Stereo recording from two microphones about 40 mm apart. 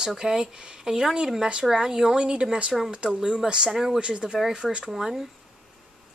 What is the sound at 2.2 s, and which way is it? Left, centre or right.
A woman's voice, right.